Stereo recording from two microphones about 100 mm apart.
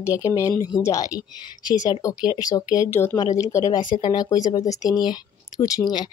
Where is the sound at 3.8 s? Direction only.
55° left (ahead or behind).